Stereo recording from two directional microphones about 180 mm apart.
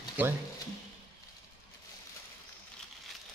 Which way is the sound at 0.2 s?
10° right (ahead or behind).